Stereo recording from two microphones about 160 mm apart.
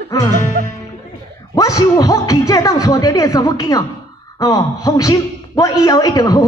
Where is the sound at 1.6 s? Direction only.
20° left (ahead or behind).